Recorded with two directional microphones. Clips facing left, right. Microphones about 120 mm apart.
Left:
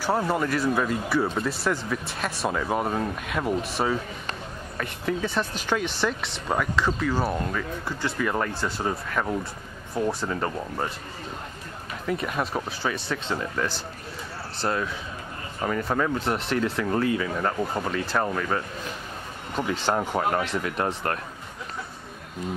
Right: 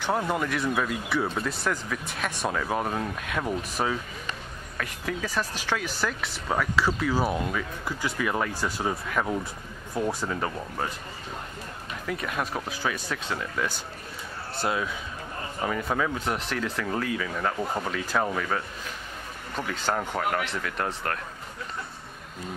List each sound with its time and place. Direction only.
0.0 s speech: 5° left (ahead or behind)
12.1 s speech: centre (ahead or behind)
20.2 s speech: 25° left (ahead or behind)